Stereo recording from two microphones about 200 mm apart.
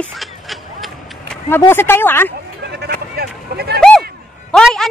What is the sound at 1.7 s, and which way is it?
Speech, 10° left (ahead or behind).